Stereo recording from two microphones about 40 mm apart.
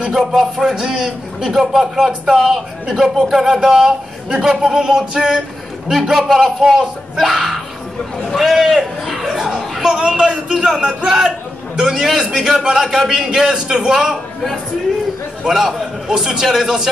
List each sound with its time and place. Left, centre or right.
0.1 s a man's voice: centre
15.4 s a man's voice: centre